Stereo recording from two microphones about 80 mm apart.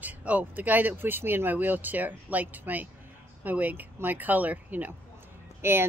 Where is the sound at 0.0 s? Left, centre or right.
Centre.